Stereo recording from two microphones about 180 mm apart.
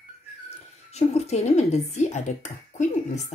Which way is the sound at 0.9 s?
35° left (ahead or behind).